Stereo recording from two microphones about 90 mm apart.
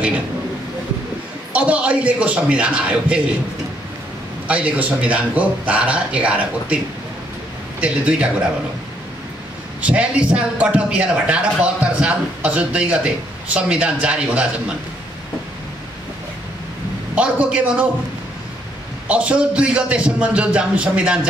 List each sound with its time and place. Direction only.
1.5 s speech: 15° right (ahead or behind)
4.5 s speech: 15° right (ahead or behind)
7.8 s speech: 15° right (ahead or behind)
9.8 s speech: 15° right (ahead or behind)
17.1 s speech: 15° right (ahead or behind)
19.0 s speech: 15° right (ahead or behind)